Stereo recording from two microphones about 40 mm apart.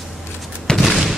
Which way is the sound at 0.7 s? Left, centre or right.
Centre.